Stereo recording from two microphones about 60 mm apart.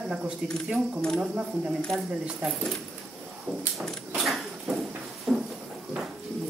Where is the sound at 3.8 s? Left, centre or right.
Centre.